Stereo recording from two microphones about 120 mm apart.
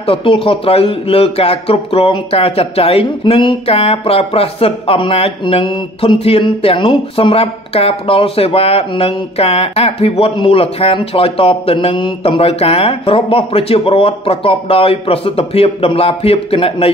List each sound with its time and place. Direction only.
0.0 s speech: 50° left (ahead or behind)